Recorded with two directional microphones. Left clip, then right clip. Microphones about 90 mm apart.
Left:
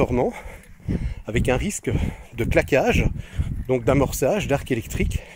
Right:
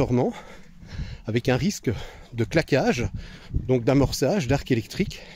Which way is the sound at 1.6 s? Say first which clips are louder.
Left 1 dB; 25° right (ahead or behind).